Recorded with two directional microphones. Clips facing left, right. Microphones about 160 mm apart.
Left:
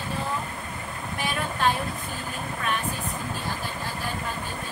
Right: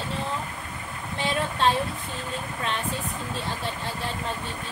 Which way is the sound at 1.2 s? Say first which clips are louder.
Right 2 dB; 25° right (ahead or behind).